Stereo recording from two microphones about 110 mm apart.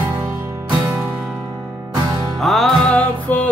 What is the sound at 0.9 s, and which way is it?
Music, 15° right (ahead or behind).